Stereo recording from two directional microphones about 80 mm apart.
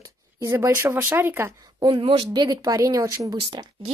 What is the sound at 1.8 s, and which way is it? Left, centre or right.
Speech, right.